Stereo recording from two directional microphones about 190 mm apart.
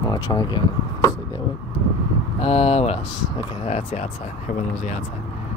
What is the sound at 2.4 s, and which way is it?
Speech, 30° left (ahead or behind).